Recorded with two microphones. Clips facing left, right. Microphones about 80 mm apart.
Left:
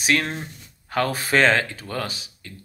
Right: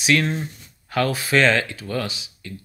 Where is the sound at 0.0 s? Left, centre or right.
Left.